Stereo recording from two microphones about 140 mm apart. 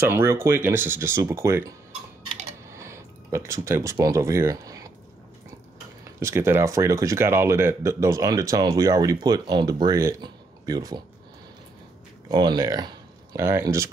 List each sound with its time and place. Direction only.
0.0 s speech: 15° right (ahead or behind)
2.7 s speech: 20° right (ahead or behind)
6.1 s speech: 20° right (ahead or behind)
10.2 s a sound: 25° right (ahead or behind)
12.3 s speech: 30° right (ahead or behind)